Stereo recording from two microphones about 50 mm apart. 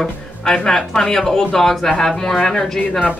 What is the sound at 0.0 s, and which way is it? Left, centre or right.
A woman's voice, centre.